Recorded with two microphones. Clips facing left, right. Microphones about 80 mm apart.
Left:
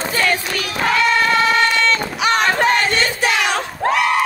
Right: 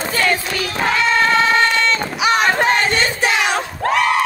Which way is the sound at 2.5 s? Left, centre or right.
Right.